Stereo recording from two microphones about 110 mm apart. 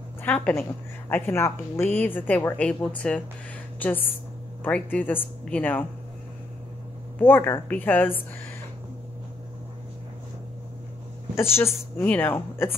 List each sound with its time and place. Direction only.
0.2 s a woman's voice: 15° left (ahead or behind)
1.1 s speech: 20° left (ahead or behind)
7.2 s a woman's voice: 20° left (ahead or behind)
11.5 s a woman's voice: 20° left (ahead or behind)